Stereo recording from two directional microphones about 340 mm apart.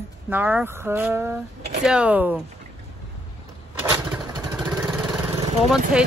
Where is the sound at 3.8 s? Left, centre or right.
Centre.